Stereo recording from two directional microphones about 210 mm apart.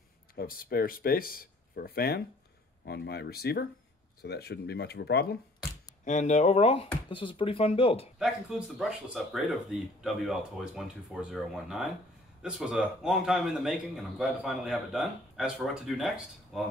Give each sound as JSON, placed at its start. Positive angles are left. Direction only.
{"t": 0.4, "sound": "speech", "side_deg": 45}
{"t": 6.0, "sound": "speech", "side_deg": 35}
{"t": 8.2, "sound": "a man's voice", "side_deg": -5}